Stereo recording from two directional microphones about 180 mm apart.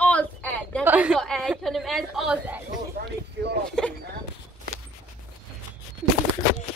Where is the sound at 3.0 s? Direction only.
65° right (ahead or behind).